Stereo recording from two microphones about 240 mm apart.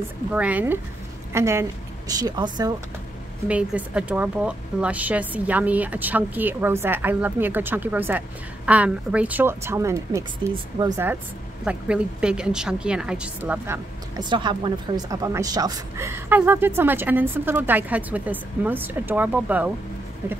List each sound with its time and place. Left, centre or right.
0.3 s a woman's voice: centre
3.4 s speech: centre